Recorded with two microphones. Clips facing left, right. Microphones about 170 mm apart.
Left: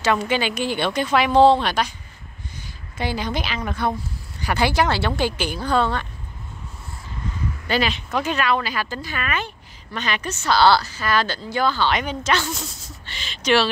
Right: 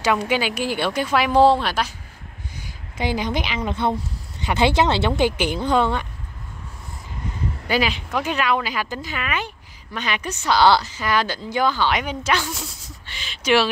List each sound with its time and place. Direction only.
0.3 s a woman's voice: 5° right (ahead or behind)
2.6 s a woman's voice: 15° right (ahead or behind)
7.6 s a woman's voice: 10° right (ahead or behind)